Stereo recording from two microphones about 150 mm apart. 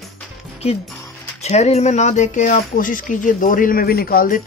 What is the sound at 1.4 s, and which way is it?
Speech, 45° left (ahead or behind).